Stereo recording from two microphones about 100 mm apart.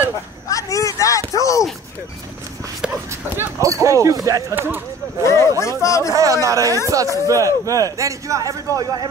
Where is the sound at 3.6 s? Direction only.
30° right (ahead or behind).